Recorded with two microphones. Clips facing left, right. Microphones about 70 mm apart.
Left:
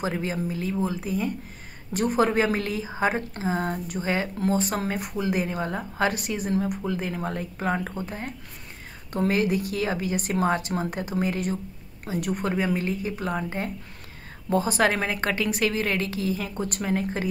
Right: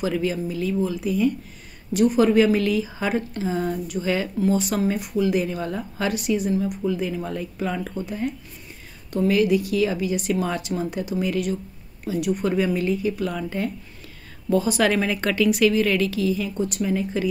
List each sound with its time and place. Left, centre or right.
0.0 s speech: left